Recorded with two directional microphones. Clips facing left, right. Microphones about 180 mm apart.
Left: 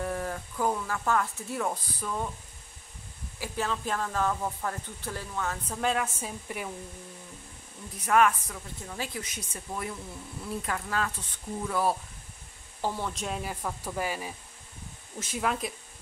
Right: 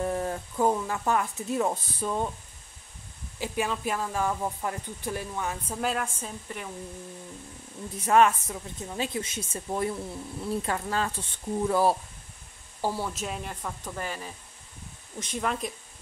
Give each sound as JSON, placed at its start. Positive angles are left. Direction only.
{"t": 0.0, "sound": "speech", "side_deg": -25}
{"t": 3.3, "sound": "speech", "side_deg": -15}
{"t": 6.1, "sound": "a woman's voice", "side_deg": 10}
{"t": 8.0, "sound": "a woman's voice", "side_deg": -25}
{"t": 12.8, "sound": "speech", "side_deg": -10}